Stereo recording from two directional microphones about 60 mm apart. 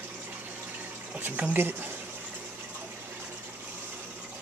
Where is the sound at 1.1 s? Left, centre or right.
Right.